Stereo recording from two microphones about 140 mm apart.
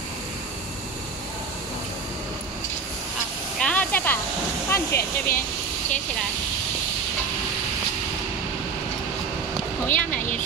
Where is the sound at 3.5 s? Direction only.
10° left (ahead or behind).